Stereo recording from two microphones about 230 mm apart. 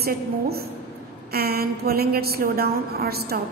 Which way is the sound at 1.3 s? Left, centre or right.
Right.